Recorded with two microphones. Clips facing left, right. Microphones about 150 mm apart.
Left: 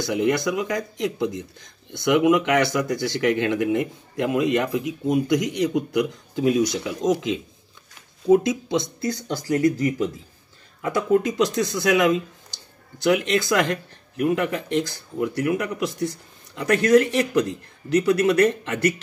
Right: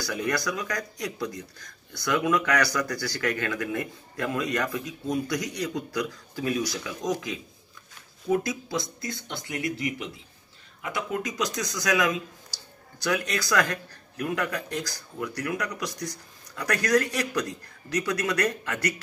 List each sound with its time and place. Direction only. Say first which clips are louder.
0.0 s speech: left 7 dB; 20° left (ahead or behind)
9.0 s speech: left 9 dB; 35° left (ahead or behind)
11.1 s speech: left 10 dB; 30° left (ahead or behind)